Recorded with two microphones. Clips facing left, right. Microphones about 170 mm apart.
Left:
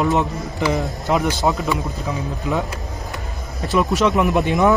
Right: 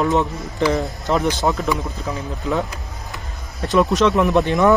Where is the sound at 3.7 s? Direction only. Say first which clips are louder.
Right 2 dB; centre (ahead or behind).